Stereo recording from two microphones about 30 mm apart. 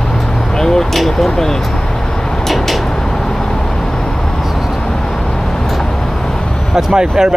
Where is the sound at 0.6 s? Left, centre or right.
Centre.